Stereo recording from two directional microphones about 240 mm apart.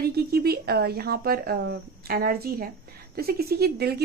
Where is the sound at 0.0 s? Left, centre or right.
Right.